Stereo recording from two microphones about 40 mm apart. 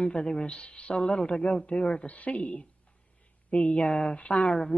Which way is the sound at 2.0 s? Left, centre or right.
Left.